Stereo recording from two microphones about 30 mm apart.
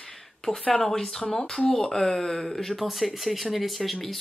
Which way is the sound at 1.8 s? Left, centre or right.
Centre.